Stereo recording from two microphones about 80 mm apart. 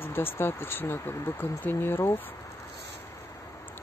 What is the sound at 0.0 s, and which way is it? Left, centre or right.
Speech, left.